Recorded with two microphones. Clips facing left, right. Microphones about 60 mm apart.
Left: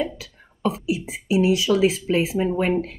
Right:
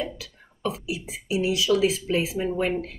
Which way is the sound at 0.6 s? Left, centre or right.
Left.